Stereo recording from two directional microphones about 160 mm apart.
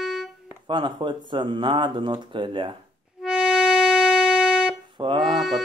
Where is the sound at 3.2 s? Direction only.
5° right (ahead or behind).